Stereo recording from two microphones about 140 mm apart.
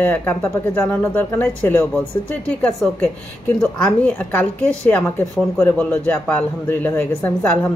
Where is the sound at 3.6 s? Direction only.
5° left (ahead or behind).